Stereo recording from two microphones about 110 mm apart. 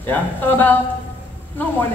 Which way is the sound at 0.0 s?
15° left (ahead or behind).